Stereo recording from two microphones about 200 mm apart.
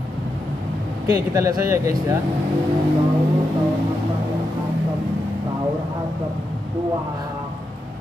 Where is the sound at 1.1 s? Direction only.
15° right (ahead or behind).